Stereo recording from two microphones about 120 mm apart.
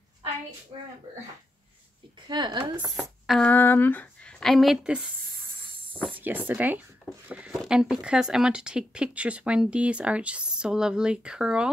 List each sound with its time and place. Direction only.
2.2 s speech: 40° right (ahead or behind)
3.0 s speech: 5° left (ahead or behind)
3.5 s speech: 15° left (ahead or behind); by 11.7 s 10° right (ahead or behind)